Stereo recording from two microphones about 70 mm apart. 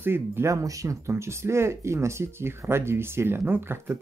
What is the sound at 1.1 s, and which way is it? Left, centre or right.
Speech, right.